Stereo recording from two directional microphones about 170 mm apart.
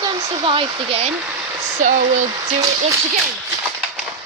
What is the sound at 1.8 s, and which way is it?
Speech, 45° right (ahead or behind).